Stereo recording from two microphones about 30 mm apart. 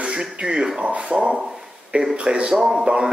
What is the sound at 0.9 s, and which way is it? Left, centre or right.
Speech, right.